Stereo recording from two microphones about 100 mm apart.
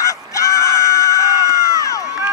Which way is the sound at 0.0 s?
35° left (ahead or behind).